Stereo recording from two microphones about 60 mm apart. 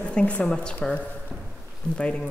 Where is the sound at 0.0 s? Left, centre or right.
Centre.